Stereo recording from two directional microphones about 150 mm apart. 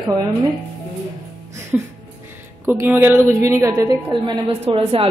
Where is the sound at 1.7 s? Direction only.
10° right (ahead or behind).